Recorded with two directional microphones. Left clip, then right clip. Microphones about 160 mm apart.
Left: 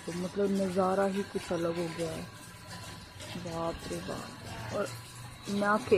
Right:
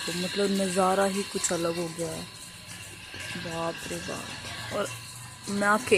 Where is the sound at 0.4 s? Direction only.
30° right (ahead or behind).